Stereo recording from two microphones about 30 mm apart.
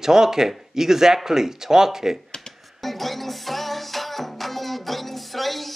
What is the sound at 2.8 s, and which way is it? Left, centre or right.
Music, centre.